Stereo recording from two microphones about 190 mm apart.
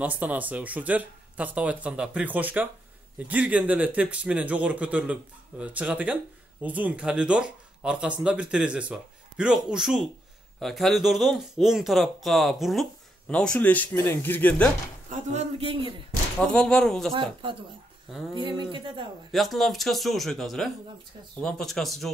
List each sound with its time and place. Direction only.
0.0 s speech: 10° right (ahead or behind); by 14.7 s 10° left (ahead or behind)
15.0 s a man's voice: 35° right (ahead or behind)
16.3 s speech: 5° left (ahead or behind)
17.1 s a man's voice: 25° right (ahead or behind)
19.3 s speech: centre (ahead or behind)